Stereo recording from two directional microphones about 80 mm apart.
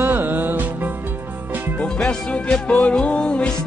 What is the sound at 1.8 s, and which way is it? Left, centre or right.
Music, centre.